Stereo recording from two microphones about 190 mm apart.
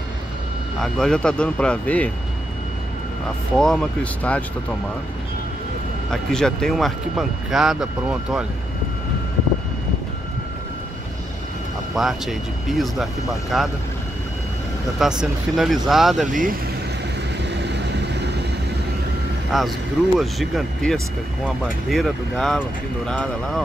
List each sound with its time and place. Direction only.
0.7 s speech: 5° left (ahead or behind)
3.5 s speech: 5° left (ahead or behind)
6.3 s speech: 5° left (ahead or behind)
11.9 s speech: centre (ahead or behind)
15.0 s speech: 5° right (ahead or behind)
16.3 s speech: 45° right (ahead or behind)
17.5 s vehicle: 65° right (ahead or behind)
19.5 s speech: centre (ahead or behind)